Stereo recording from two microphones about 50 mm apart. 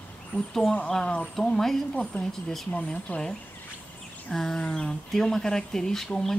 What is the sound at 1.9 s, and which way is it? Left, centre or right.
A woman's voice, left.